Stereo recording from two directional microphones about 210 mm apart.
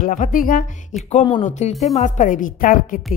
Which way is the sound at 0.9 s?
Centre (ahead or behind).